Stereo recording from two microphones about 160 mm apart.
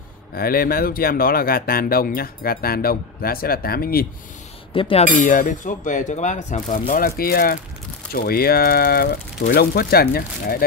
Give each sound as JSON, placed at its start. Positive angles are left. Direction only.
{"t": 0.3, "sound": "speech", "side_deg": 70}
{"t": 4.7, "sound": "speech", "side_deg": 35}
{"t": 5.2, "sound": "speech", "side_deg": 55}
{"t": 6.9, "sound": "speech", "side_deg": 65}